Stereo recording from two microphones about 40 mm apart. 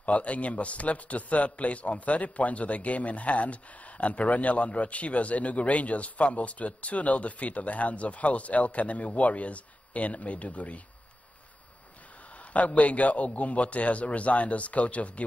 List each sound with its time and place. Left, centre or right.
0.0 s a man's voice: left
12.5 s a man's voice: left